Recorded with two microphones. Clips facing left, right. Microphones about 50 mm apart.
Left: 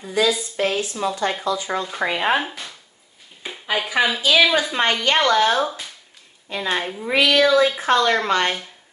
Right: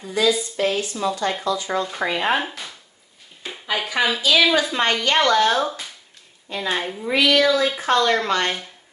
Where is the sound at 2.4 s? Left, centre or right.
Centre.